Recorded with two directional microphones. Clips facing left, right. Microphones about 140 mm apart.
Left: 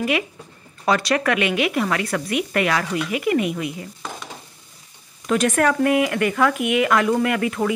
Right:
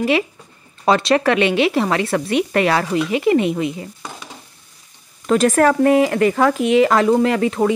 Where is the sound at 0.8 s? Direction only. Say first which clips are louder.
Right 4 dB; 25° right (ahead or behind).